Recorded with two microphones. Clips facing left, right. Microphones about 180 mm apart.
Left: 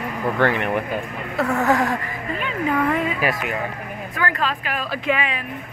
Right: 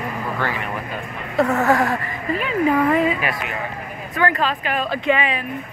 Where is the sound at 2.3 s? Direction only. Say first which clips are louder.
Right 4 dB; 5° right (ahead or behind).